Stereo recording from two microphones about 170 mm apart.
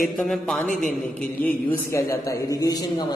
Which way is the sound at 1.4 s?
15° left (ahead or behind).